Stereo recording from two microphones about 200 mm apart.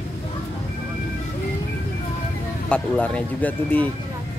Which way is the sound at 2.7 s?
5° left (ahead or behind).